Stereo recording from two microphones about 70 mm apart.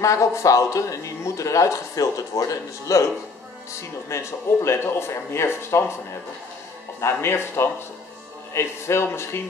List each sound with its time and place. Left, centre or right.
0.0 s a man's voice: left
4.1 s speech: left
7.0 s speech: left